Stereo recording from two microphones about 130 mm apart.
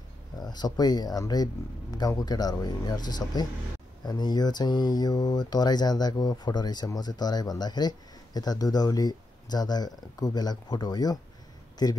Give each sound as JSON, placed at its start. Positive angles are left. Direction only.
{"t": 0.4, "sound": "speech", "side_deg": 30}